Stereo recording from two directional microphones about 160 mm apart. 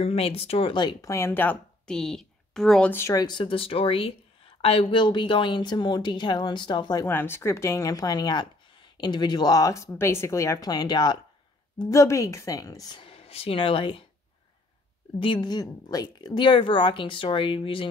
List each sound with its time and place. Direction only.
0.0 s speech: 40° left (ahead or behind); by 2.9 s centre (ahead or behind)
2.9 s speech: 15° left (ahead or behind)
7.1 s speech: 15° left (ahead or behind); by 14.0 s 35° left (ahead or behind)
15.1 s speech: 30° left (ahead or behind)